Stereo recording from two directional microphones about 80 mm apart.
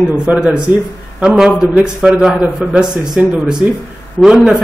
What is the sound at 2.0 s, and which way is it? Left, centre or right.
A man's voice, centre.